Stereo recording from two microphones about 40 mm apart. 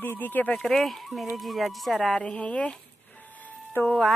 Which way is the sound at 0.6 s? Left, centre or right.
Centre.